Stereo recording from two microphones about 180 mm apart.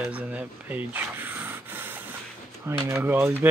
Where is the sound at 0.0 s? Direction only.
5° right (ahead or behind).